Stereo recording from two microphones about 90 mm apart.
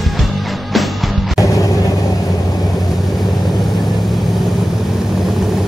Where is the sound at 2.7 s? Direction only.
Centre (ahead or behind).